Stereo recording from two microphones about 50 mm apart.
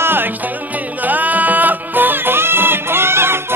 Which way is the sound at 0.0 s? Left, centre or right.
Right.